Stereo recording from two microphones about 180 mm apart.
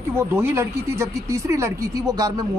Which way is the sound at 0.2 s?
15° right (ahead or behind).